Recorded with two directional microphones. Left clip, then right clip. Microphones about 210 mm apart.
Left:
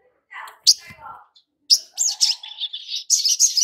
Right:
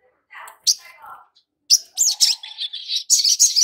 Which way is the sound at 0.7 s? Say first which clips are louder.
Left 4 dB; 10° left (ahead or behind).